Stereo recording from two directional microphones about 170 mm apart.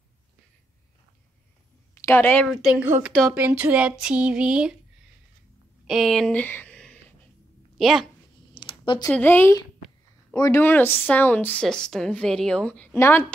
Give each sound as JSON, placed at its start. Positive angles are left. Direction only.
{"t": 2.0, "sound": "speech", "side_deg": 15}
{"t": 2.5, "sound": "music", "side_deg": -5}
{"t": 3.5, "sound": "a sound", "side_deg": -10}
{"t": 4.0, "sound": "music", "side_deg": -5}
{"t": 5.9, "sound": "a woman's voice", "side_deg": 0}
{"t": 8.5, "sound": "a sound", "side_deg": 30}
{"t": 9.1, "sound": "a woman's voice", "side_deg": 10}